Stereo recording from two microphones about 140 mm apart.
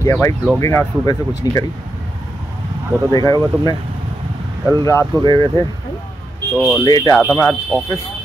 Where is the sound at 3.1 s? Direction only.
25° left (ahead or behind).